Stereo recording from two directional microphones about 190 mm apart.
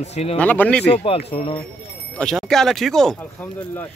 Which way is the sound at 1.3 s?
30° left (ahead or behind).